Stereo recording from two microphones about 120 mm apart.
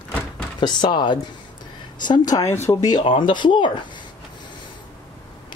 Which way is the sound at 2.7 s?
25° left (ahead or behind).